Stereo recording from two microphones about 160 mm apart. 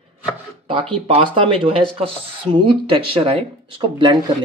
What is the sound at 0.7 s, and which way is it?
Speech, 35° right (ahead or behind).